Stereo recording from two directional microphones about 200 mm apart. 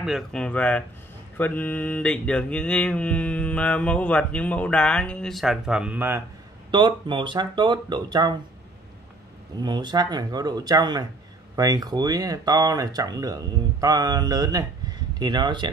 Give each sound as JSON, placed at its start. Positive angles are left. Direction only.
{"t": 0.0, "sound": "mantra", "side_deg": 0}
{"t": 6.7, "sound": "speech", "side_deg": -25}
{"t": 9.6, "sound": "speech", "side_deg": -20}